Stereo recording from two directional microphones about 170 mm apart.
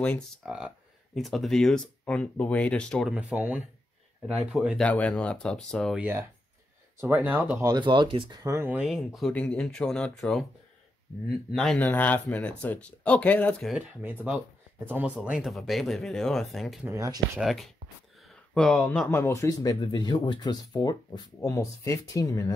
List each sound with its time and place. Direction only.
0.4 s speech: 5° right (ahead or behind)
5.9 s speech: 10° right (ahead or behind)
8.8 s speech: centre (ahead or behind)
11.5 s speech: 5° left (ahead or behind)
14.0 s speech: 10° right (ahead or behind)
16.8 s speech: 15° right (ahead or behind)
17.4 s speech: centre (ahead or behind); by 22.5 s 20° left (ahead or behind)